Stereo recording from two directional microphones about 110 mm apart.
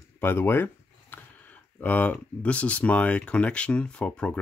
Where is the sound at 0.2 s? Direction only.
20° left (ahead or behind).